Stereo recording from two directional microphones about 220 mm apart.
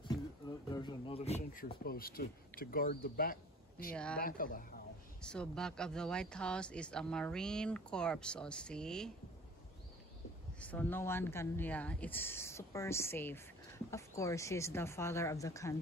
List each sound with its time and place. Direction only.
0.7 s speech: 20° left (ahead or behind); by 3.3 s 40° left (ahead or behind)
3.9 s speech: 5° left (ahead or behind)
4.2 s speech: 40° left (ahead or behind)
5.2 s speech: 5° left (ahead or behind)
10.6 s speech: 5° left (ahead or behind)